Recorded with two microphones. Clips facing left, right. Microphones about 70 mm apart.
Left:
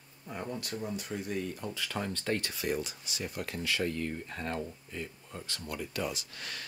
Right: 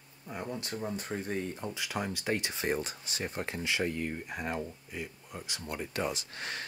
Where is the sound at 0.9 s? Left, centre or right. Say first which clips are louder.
Right 1 dB; right; by 2.6 s centre.